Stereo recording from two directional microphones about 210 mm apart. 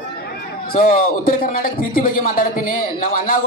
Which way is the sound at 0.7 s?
45° left (ahead or behind).